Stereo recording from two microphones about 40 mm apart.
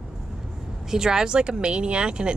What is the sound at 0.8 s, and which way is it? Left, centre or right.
Speech, centre.